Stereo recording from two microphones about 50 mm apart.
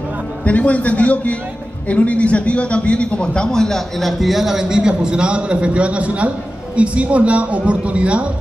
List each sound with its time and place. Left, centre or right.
0.4 s a man's voice: left; by 8.3 s right